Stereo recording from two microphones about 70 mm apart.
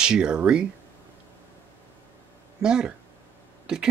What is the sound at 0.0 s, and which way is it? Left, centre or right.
Speech, centre.